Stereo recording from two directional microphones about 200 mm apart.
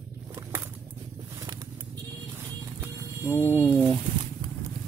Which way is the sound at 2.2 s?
15° right (ahead or behind).